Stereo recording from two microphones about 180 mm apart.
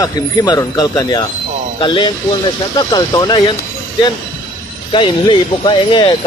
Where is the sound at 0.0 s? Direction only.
20° left (ahead or behind).